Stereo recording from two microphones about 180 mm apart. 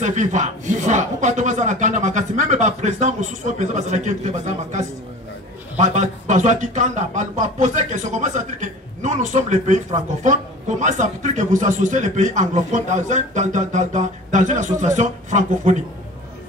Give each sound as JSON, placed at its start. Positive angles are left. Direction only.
{"t": 0.0, "sound": "a man's voice", "side_deg": -40}